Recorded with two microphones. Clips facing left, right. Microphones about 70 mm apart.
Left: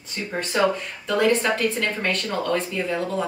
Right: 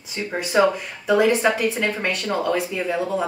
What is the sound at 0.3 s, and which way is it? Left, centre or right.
Speech, centre.